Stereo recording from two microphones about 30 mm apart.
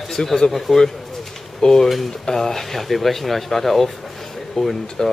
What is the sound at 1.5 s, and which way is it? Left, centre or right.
Speech, centre.